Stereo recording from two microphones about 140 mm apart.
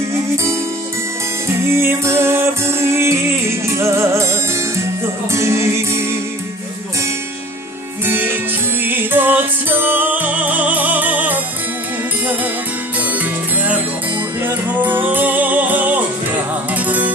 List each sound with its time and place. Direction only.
0.1 s music: 20° right (ahead or behind)
1.7 s music: 15° right (ahead or behind)
8.0 s music: 15° right (ahead or behind)
14.4 s music: 15° right (ahead or behind)